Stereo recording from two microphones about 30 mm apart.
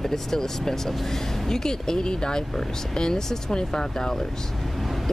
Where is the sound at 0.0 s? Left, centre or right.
Centre.